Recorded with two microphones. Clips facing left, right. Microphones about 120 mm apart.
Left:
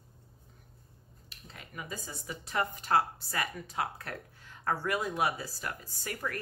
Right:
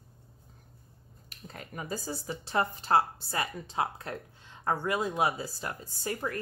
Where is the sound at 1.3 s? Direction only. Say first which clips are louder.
Right 4 dB; 45° right (ahead or behind).